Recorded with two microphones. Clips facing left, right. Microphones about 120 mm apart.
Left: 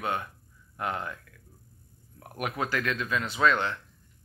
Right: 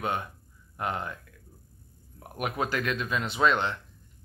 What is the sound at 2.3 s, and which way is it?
Speech, 15° right (ahead or behind).